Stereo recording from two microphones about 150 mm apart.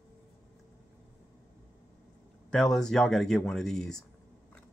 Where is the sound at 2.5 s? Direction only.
5° left (ahead or behind).